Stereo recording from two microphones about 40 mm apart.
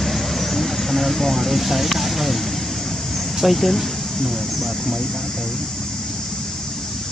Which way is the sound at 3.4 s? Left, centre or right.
Centre.